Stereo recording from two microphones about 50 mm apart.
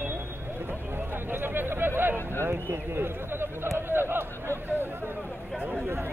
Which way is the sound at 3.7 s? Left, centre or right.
Right.